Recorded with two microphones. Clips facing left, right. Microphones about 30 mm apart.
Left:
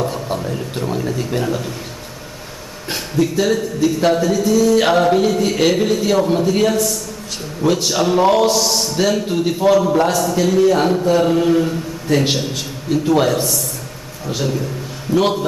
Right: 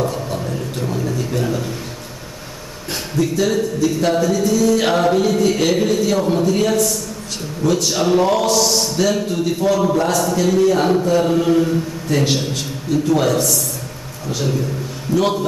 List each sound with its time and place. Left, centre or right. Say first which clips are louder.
0.0 s a sound: even; centre
1.4 s music: even; centre
2.9 s music: left 2 dB; centre
7.6 s music: left 1 dB; centre
9.3 s music: left 3 dB; centre